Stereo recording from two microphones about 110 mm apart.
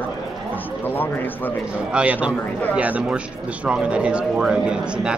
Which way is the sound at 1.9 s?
10° right (ahead or behind).